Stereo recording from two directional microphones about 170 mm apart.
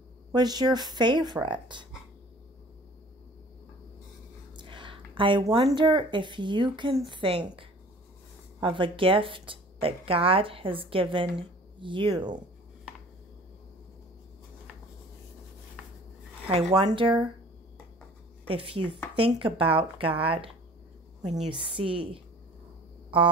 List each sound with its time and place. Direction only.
0.3 s speech: 25° right (ahead or behind)
4.6 s a sound: 30° right (ahead or behind)
5.7 s speech: 30° right (ahead or behind)
16.4 s speech: 30° right (ahead or behind)
18.5 s speech: 30° right (ahead or behind)